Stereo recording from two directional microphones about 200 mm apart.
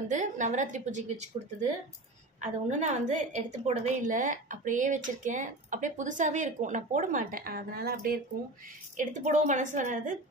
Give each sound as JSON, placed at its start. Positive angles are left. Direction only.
{"t": 0.1, "sound": "a woman's voice", "side_deg": -40}
{"t": 2.4, "sound": "a woman's voice", "side_deg": -35}
{"t": 8.9, "sound": "a woman's voice", "side_deg": -35}